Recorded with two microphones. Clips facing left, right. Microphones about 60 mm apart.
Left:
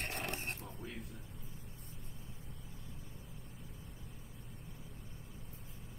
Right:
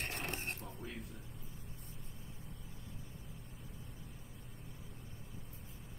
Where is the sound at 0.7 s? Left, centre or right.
Centre.